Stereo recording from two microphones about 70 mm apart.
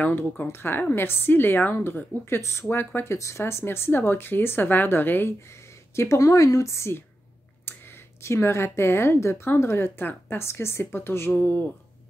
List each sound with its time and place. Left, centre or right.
0.0 s speech: left
5.9 s a woman's voice: left
8.2 s speech: left